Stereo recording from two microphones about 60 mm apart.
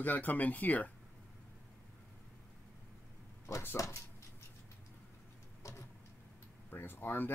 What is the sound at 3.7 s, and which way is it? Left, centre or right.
Speech, left.